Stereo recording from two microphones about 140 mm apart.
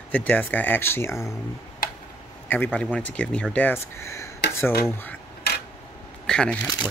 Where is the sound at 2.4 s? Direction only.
15° left (ahead or behind).